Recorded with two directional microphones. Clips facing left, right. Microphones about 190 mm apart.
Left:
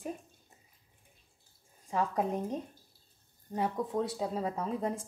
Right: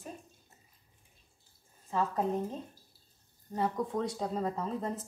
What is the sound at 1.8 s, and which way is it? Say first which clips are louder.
Speech: even; 15° left (ahead or behind).